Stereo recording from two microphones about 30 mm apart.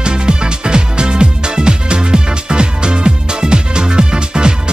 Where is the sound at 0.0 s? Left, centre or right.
Right.